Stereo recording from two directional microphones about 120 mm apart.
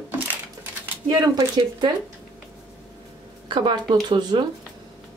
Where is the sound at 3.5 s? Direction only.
40° right (ahead or behind).